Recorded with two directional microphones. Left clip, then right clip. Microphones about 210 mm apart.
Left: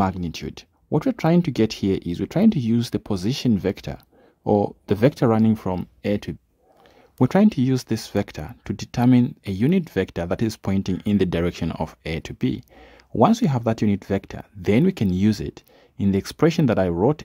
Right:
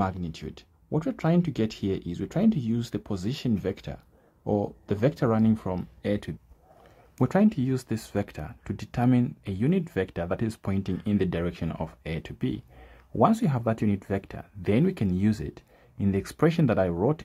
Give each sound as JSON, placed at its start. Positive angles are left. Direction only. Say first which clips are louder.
{"t": 0.0, "sound": "speech", "louder": "left 6 dB", "side_deg": 35}